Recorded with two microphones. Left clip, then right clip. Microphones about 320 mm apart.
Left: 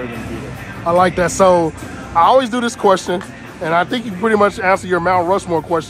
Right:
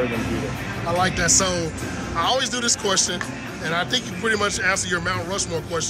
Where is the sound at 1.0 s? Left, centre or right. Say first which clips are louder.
Left 8 dB; centre.